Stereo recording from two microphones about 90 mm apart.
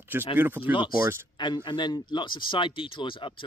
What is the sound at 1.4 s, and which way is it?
Speech, 60° left (ahead or behind).